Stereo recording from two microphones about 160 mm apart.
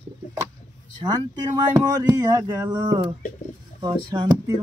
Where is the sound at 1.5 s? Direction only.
20° right (ahead or behind).